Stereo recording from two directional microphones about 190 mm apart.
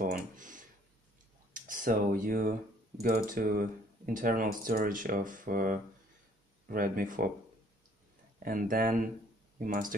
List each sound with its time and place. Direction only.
0.4 s a sound: 45° right (ahead or behind)
1.5 s speech: 45° right (ahead or behind)
8.4 s speech: 45° right (ahead or behind)